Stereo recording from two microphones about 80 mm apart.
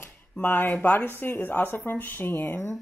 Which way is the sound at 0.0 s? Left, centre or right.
Left.